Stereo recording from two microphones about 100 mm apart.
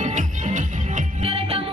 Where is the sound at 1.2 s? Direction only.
75° right (ahead or behind).